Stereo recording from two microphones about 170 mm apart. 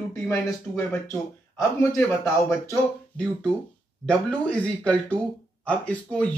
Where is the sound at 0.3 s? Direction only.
15° left (ahead or behind).